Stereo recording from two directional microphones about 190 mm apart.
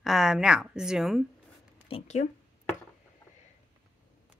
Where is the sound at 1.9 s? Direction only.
35° left (ahead or behind).